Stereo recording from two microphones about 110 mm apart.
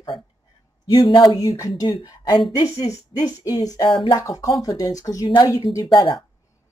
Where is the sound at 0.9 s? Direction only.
45° left (ahead or behind).